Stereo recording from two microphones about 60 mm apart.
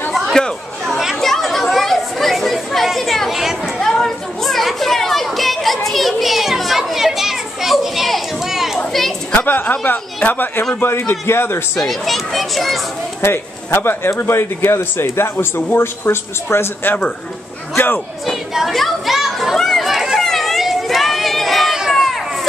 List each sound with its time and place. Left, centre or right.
0.1 s chatter: centre
3.8 s a sound: centre
9.3 s a man's voice: left
11.7 s speech: centre
13.2 s a man's voice: left
18.2 s chatter: centre
20.2 s a sound: centre